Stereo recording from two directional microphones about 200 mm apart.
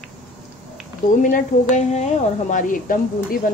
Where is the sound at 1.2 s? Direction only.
35° left (ahead or behind).